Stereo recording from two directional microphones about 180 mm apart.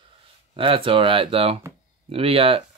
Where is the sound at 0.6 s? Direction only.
30° right (ahead or behind).